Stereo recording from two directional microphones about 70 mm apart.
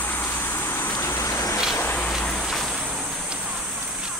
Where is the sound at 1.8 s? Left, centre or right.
Left.